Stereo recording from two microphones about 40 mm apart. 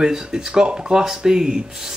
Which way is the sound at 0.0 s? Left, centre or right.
Centre.